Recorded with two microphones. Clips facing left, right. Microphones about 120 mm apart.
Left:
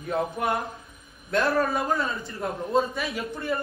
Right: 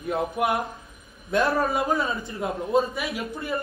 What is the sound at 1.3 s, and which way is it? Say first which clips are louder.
Speech: right 1 dB; 20° right (ahead or behind).